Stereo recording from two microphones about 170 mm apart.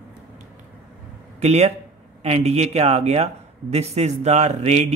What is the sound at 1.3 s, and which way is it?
Speech, 40° right (ahead or behind).